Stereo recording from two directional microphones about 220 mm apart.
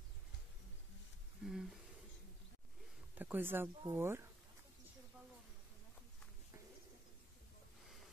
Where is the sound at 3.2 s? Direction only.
10° right (ahead or behind).